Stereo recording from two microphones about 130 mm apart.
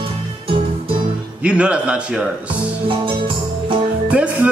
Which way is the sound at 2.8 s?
40° right (ahead or behind).